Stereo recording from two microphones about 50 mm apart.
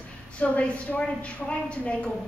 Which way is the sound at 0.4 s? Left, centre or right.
Left.